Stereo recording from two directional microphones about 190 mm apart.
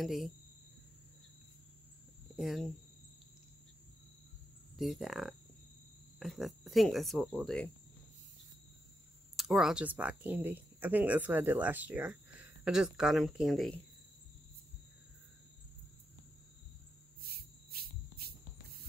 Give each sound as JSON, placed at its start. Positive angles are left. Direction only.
{"t": 0.0, "sound": "speech", "side_deg": 0}
{"t": 2.3, "sound": "speech", "side_deg": 0}
{"t": 4.7, "sound": "speech", "side_deg": 0}
{"t": 9.4, "sound": "speech", "side_deg": 0}
{"t": 17.2, "sound": "cricket", "side_deg": -55}